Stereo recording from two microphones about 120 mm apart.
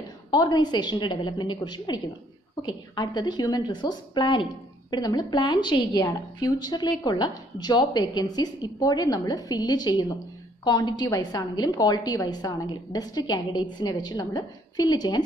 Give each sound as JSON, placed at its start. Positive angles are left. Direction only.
{"t": 0.3, "sound": "a woman's voice", "side_deg": 35}
{"t": 3.0, "sound": "a woman's voice", "side_deg": 35}